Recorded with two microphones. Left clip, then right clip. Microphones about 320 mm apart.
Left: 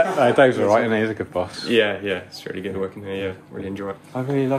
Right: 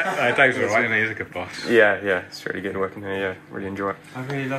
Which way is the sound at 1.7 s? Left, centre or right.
Centre.